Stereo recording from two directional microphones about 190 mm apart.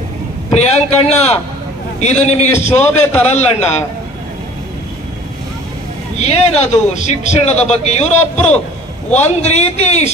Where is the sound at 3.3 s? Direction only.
35° left (ahead or behind).